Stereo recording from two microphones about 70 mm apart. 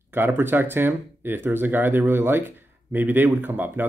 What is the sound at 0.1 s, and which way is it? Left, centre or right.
Speech, right.